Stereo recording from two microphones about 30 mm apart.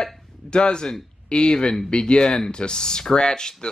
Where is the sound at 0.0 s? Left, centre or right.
Left.